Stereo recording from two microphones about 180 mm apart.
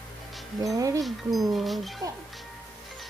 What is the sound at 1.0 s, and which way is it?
Speech, centre (ahead or behind).